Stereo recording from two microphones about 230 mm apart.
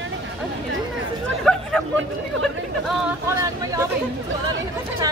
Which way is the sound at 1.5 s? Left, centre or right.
Centre.